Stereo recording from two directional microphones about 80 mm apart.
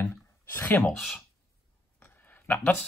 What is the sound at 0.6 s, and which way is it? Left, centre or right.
Speech, left.